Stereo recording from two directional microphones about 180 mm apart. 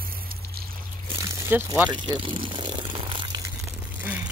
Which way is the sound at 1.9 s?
25° right (ahead or behind).